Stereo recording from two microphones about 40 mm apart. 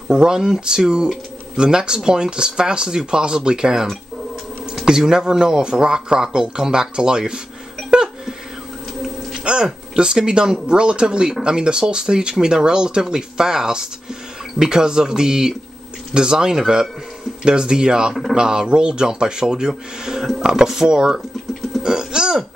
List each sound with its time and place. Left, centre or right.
0.1 s speech: centre
4.8 s speech: centre
7.9 s a sound: centre
9.4 s a sound: right
10.1 s speech: centre
21.7 s hiccup: centre